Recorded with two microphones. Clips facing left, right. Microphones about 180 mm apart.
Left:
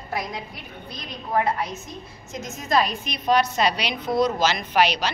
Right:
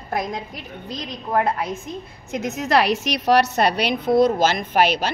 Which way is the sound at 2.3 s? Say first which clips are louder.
Right 4 dB; 65° right (ahead or behind).